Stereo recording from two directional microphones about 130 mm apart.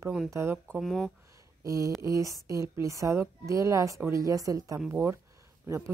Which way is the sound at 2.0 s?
25° right (ahead or behind).